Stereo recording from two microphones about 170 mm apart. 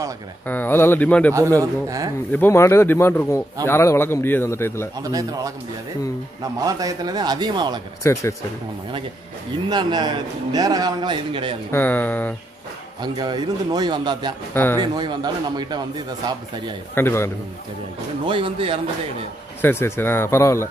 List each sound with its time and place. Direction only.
0.5 s speech: 10° left (ahead or behind)
1.3 s a man's voice: 20° right (ahead or behind)
2.3 s speech: 15° left (ahead or behind)
4.9 s a man's voice: 20° right (ahead or behind)
6.6 s a man's voice: 20° right (ahead or behind)
8.0 s speech: 15° left (ahead or behind)
9.7 s a man's voice: 25° right (ahead or behind)
11.7 s speech: 10° left (ahead or behind)
13.0 s a man's voice: 25° right (ahead or behind)
14.5 s speech: 10° left (ahead or behind)
14.8 s a man's voice: 25° right (ahead or behind)
16.9 s speech: 15° left (ahead or behind)
18.2 s speech: 30° right (ahead or behind)
19.6 s speech: 10° left (ahead or behind)